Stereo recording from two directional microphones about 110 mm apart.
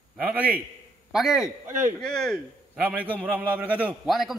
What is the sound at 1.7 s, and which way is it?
Speech, 20° right (ahead or behind).